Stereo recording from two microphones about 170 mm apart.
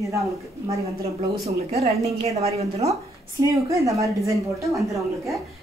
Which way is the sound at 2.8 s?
20° right (ahead or behind).